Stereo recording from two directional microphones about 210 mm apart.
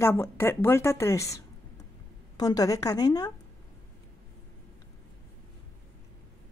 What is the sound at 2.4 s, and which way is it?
Speech, 15° left (ahead or behind).